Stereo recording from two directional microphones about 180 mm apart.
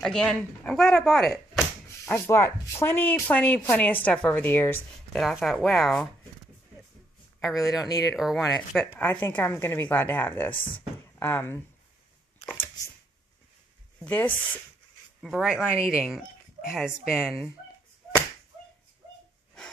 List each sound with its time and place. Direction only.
0.0 s speech: 5° left (ahead or behind)
2.0 s speech: 15° left (ahead or behind)
5.1 s speech: centre (ahead or behind)
7.4 s speech: 20° left (ahead or behind)
8.2 s speech: centre (ahead or behind)
12.4 s a sound: 10° left (ahead or behind)
14.0 s speech: 10° left (ahead or behind)
15.2 s speech: 5° right (ahead or behind)